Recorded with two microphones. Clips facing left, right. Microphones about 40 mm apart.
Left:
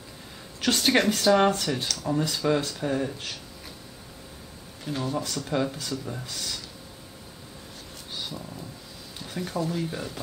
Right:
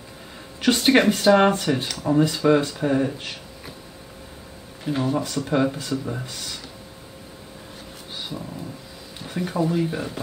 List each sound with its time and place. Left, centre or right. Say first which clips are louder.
0.6 s speech: right 5 dB; centre
4.8 s speech: right 6 dB; centre
8.2 s dog: right 3 dB; centre
9.2 s speech: right 6 dB; centre